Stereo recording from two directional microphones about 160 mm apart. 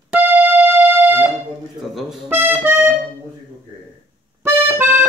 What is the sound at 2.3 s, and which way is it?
Accordion, 15° right (ahead or behind).